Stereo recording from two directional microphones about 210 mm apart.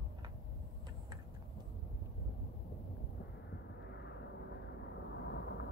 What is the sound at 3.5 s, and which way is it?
Vehicle, 55° left (ahead or behind).